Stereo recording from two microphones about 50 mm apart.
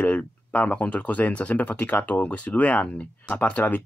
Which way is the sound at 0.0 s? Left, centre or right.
Left.